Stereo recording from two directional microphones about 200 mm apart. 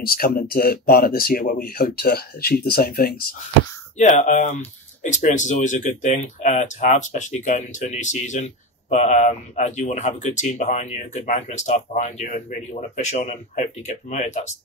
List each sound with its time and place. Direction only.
0.0 s speech: 45° left (ahead or behind)
4.0 s speech: 35° left (ahead or behind)